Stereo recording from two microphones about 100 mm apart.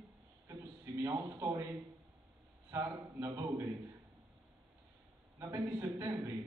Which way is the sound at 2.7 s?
30° right (ahead or behind).